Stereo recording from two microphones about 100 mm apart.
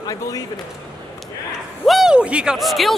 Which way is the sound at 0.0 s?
35° left (ahead or behind).